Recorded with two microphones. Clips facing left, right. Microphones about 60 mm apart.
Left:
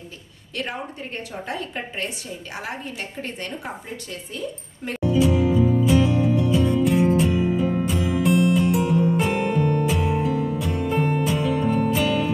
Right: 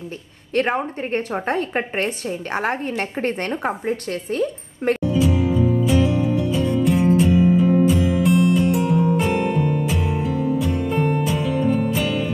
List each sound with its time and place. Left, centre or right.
0.6 s a woman's voice: right
5.0 s music: centre